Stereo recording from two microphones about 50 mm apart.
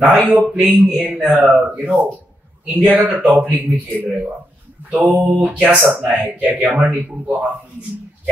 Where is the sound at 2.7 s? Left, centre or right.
Right.